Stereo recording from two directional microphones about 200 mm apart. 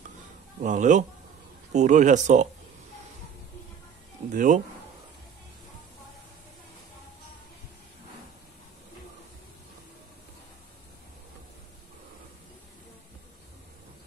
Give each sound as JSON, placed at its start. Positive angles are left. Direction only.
{"t": 0.6, "sound": "speech", "side_deg": -40}
{"t": 4.3, "sound": "speech", "side_deg": -40}